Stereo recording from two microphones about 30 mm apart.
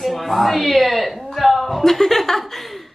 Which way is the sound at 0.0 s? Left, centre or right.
Centre.